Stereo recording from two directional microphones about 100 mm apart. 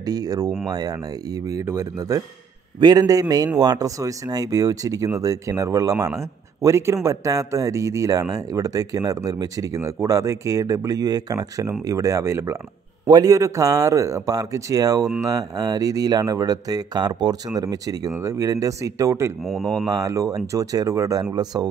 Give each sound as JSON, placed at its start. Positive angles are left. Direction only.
{"t": 0.0, "sound": "speech", "side_deg": -40}
{"t": 9.8, "sound": "speech", "side_deg": -25}
{"t": 13.0, "sound": "speech", "side_deg": -40}
{"t": 18.1, "sound": "speech", "side_deg": -25}
{"t": 19.4, "sound": "speech", "side_deg": 5}
{"t": 19.9, "sound": "speech", "side_deg": -35}